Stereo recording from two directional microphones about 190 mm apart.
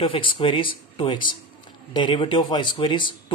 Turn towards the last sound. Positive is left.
turn(degrees=25)  # may be behind; listen again after turning